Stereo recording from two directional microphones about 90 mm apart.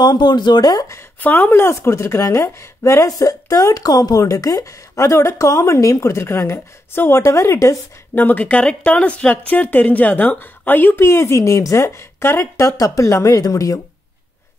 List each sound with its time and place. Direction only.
0.0 s speech: 50° left (ahead or behind)
1.2 s speech: 20° left (ahead or behind); by 7.8 s 35° left (ahead or behind)
8.1 s speech: 20° left (ahead or behind)
12.6 s speech: 40° left (ahead or behind)